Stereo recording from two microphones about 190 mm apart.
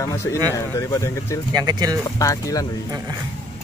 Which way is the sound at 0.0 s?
15° left (ahead or behind).